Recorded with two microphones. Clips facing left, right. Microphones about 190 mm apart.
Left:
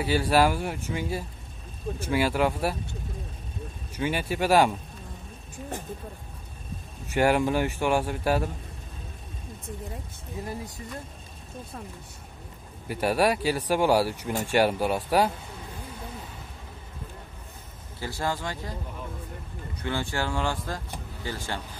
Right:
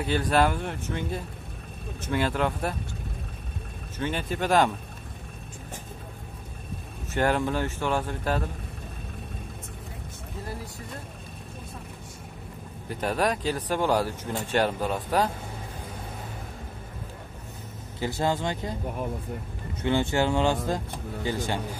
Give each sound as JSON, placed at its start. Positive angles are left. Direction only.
{"t": 0.0, "sound": "speech", "side_deg": 5}
{"t": 4.0, "sound": "speech", "side_deg": 10}
{"t": 7.1, "sound": "speech", "side_deg": 10}
{"t": 12.8, "sound": "speech", "side_deg": 10}
{"t": 18.0, "sound": "speech", "side_deg": -20}
{"t": 19.8, "sound": "speech", "side_deg": -20}